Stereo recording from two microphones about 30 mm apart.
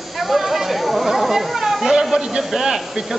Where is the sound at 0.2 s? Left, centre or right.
Centre.